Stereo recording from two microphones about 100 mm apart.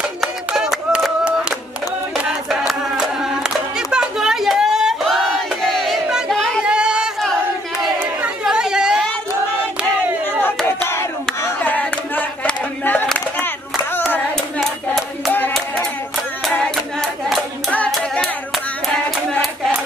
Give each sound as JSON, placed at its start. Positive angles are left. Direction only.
{"t": 0.5, "sound": "a sound", "side_deg": -5}
{"t": 2.2, "sound": "choir", "side_deg": -5}
{"t": 5.7, "sound": "crowd", "side_deg": 0}
{"t": 8.5, "sound": "chatter", "side_deg": -5}
{"t": 10.9, "sound": "hands", "side_deg": 25}
{"t": 14.6, "sound": "clapping", "side_deg": 0}
{"t": 16.5, "sound": "hands", "side_deg": 10}
{"t": 19.4, "sound": "clapping", "side_deg": 0}